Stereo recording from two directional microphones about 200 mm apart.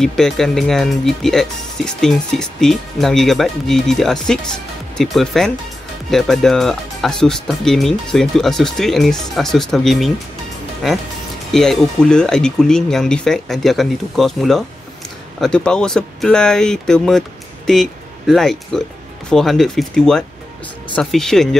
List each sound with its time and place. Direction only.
0.0 s speech: centre (ahead or behind)